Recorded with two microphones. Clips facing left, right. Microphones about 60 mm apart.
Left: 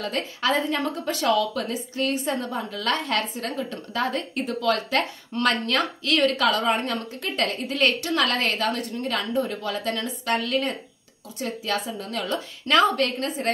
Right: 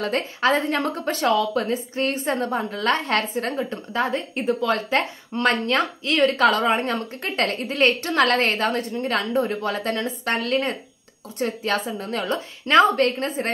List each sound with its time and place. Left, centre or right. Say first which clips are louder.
0.0 s a woman's voice: right 4 dB; right